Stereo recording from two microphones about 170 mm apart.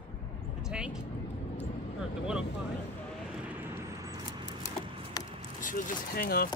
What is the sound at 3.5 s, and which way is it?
Vehicle, 10° right (ahead or behind).